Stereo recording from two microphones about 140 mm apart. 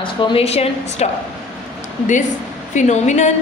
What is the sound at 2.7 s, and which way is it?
Speech, 55° left (ahead or behind).